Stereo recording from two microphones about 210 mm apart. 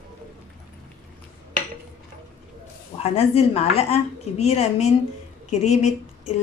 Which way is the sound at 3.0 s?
30° left (ahead or behind).